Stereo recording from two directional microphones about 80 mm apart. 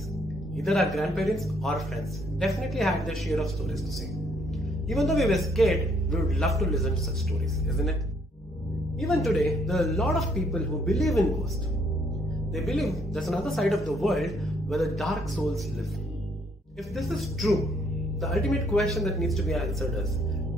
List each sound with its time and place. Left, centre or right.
0.6 s speech: centre
4.8 s speech: centre
9.0 s speech: centre
12.5 s speech: centre
16.9 s speech: centre